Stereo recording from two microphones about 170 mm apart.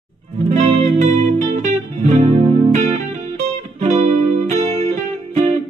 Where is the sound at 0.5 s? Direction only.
45° right (ahead or behind).